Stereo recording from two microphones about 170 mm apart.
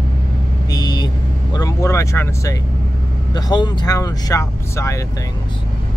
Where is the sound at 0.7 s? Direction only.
25° left (ahead or behind).